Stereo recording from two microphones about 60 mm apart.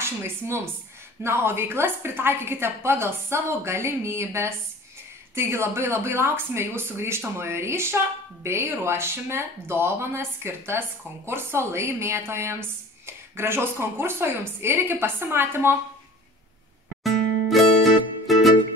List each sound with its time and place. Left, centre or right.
0.0 s a woman's voice: right
17.0 s music: centre